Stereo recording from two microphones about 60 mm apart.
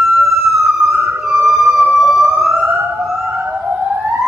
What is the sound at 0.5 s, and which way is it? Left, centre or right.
Police car, centre.